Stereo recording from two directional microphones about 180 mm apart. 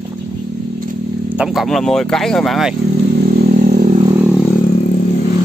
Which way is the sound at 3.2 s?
55° right (ahead or behind).